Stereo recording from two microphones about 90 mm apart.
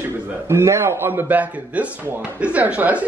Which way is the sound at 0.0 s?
30° right (ahead or behind).